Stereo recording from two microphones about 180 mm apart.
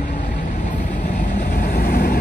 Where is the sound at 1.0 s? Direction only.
45° left (ahead or behind).